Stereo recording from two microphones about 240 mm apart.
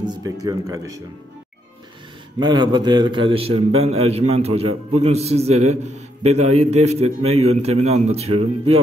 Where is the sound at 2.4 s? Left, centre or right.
Centre.